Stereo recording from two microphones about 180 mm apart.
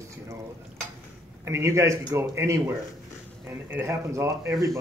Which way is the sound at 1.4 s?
15° right (ahead or behind).